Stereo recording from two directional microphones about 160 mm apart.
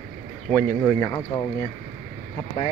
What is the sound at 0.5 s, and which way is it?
Speech, 10° left (ahead or behind).